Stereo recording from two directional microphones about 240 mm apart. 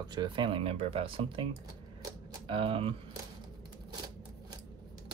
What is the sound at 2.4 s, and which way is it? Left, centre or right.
Speech, right.